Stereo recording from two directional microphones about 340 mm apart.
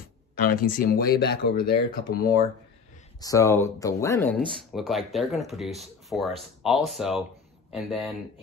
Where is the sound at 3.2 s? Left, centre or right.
Centre.